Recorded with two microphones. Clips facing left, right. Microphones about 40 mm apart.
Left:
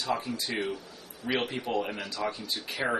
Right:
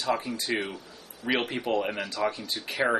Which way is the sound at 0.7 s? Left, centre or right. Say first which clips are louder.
Even; centre.